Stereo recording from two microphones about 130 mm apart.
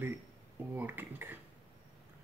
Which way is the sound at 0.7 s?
15° right (ahead or behind).